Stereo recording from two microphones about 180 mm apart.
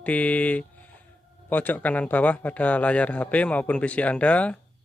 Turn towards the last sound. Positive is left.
turn(degrees=5)  # may be behind; listen again after turning